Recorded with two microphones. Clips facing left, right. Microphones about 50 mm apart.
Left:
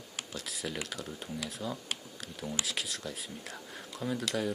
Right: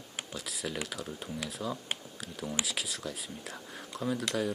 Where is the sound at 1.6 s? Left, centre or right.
Centre.